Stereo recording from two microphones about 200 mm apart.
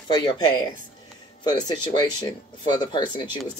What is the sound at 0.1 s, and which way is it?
Speech, 25° left (ahead or behind).